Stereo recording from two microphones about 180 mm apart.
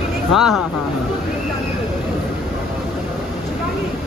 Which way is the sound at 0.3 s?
Centre (ahead or behind).